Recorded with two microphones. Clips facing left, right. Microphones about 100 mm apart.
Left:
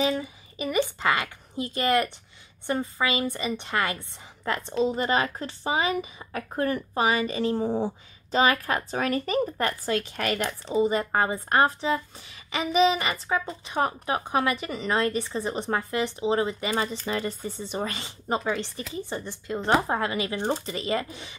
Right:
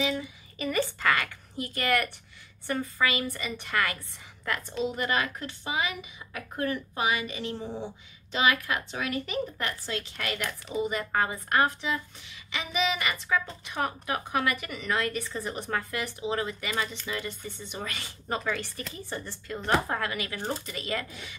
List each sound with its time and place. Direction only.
0.6 s a woman's voice: 20° left (ahead or behind); by 10.4 s 50° left (ahead or behind)
10.4 s a woman's voice: 30° left (ahead or behind)